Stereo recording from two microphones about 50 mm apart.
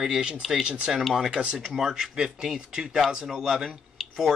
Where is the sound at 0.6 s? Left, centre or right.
Centre.